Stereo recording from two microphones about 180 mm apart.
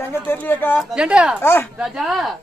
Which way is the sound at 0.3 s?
10° left (ahead or behind).